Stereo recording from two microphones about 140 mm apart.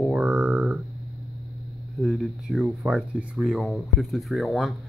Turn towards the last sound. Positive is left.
turn(degrees=0)  # may be behind; listen again after turning